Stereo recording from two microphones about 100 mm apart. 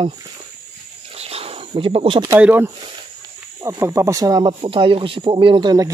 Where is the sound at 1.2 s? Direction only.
90° right; by 2.2 s 65° right (ahead or behind).